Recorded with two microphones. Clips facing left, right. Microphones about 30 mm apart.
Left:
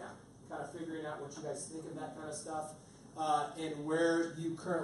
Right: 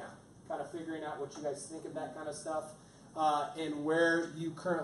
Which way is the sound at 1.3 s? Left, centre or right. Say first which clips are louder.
Right 4 dB; centre.